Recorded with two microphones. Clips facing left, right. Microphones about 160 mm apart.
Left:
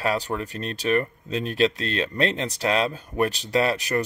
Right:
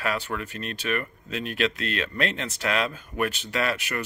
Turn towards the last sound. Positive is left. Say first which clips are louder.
# left 5 dB
turn(degrees=35)  # may be behind; listen again after turning